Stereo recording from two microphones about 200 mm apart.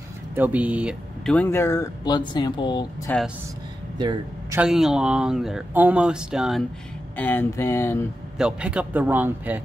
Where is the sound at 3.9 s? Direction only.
20° right (ahead or behind).